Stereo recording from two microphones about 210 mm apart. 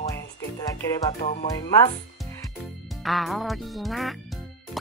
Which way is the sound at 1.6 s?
15° left (ahead or behind).